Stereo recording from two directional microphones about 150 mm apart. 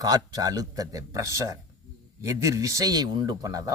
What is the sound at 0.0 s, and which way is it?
Speech, 25° right (ahead or behind).